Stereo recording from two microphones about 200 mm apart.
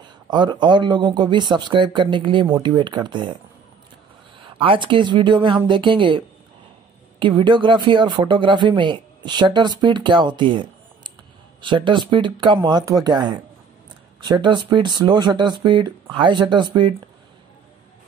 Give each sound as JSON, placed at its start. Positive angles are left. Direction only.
{"t": 0.0, "sound": "speech", "side_deg": -20}
{"t": 4.4, "sound": "speech", "side_deg": -25}